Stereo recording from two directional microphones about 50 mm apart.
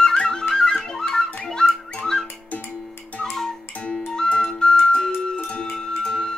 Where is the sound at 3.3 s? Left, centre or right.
Centre.